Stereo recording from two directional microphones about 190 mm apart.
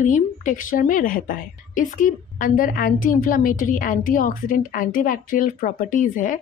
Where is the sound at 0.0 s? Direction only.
40° left (ahead or behind).